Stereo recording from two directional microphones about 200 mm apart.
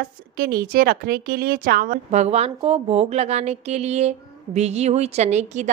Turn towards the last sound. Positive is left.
turn(degrees=-35)  # may be behind; listen again after turning